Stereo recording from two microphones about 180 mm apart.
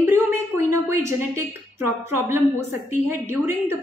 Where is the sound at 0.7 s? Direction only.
15° right (ahead or behind).